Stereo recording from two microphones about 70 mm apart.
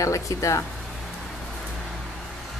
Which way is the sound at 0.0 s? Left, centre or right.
Left.